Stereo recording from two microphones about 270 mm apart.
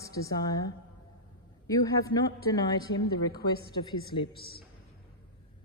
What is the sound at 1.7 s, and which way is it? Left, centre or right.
Speech, centre.